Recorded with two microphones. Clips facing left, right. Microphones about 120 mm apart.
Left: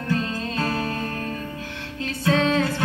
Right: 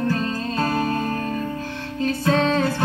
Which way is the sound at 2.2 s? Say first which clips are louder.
Even; 40° right (ahead or behind).